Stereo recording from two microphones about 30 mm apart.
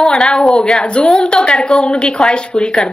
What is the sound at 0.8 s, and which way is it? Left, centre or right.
A woman's voice, left.